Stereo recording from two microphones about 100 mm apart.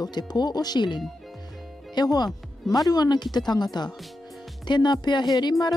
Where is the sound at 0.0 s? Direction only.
45° left (ahead or behind).